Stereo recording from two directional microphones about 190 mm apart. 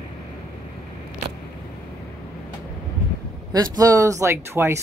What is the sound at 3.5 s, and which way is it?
Speech, 20° right (ahead or behind).